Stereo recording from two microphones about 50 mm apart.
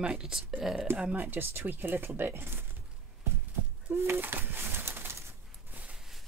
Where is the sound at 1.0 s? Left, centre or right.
Right.